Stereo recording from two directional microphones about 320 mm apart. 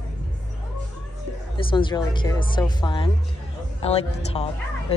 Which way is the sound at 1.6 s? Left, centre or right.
Centre.